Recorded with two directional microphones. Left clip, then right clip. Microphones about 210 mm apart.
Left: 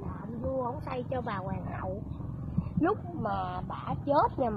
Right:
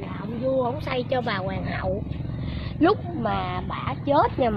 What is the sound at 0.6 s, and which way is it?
A woman's voice, 5° left (ahead or behind).